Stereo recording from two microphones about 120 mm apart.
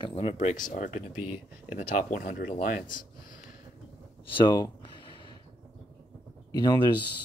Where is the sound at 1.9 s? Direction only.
90° left.